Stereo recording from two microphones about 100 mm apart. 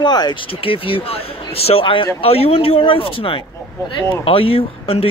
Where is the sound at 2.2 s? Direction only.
75° left (ahead or behind).